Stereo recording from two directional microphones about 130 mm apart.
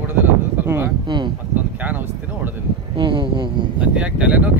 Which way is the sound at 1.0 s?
35° right (ahead or behind).